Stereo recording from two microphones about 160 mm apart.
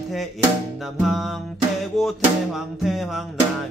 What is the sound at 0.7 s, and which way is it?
Music, centre (ahead or behind).